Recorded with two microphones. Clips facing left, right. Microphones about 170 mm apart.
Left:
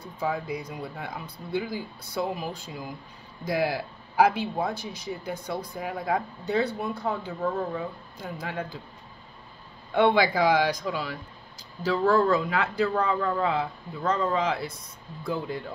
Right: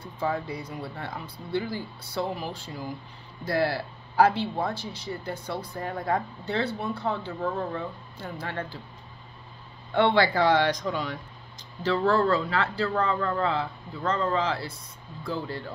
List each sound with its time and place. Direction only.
0.0 s speech: 10° left (ahead or behind)
9.9 s speech: 15° left (ahead or behind)